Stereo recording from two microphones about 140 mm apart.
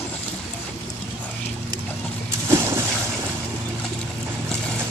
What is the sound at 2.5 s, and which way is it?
Vehicle, 20° right (ahead or behind).